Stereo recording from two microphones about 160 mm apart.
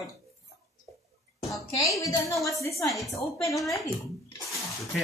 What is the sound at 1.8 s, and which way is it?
Female singing, 20° left (ahead or behind).